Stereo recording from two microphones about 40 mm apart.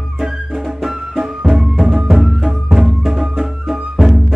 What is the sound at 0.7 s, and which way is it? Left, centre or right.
Music, centre.